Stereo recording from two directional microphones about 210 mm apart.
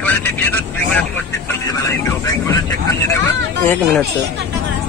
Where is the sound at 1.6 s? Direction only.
15° left (ahead or behind).